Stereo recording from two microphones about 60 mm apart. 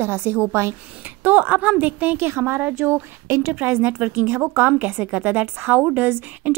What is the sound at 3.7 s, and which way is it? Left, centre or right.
Speech, right.